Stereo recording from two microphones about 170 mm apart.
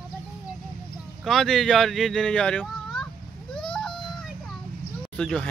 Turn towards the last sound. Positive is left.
turn(degrees=5)  # may be behind; listen again after turning